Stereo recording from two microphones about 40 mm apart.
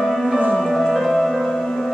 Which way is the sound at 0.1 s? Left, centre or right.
Centre.